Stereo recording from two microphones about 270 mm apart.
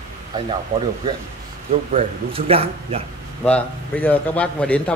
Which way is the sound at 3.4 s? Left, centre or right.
Centre.